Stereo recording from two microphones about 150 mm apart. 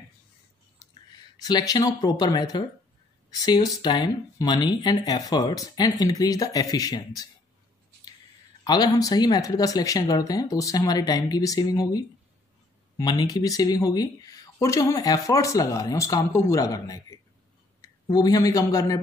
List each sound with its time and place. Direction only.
1.4 s speech: 25° left (ahead or behind)
8.6 s speech: 25° left (ahead or behind)